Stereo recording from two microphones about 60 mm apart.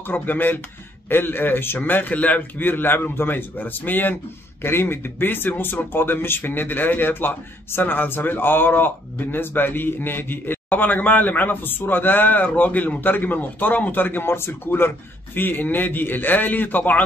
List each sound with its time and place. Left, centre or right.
0.0 s a man's voice: left